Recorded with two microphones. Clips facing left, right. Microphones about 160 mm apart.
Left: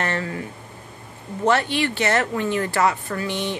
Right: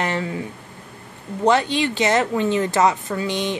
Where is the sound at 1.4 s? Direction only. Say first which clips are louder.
Right 2 dB; 15° right (ahead or behind).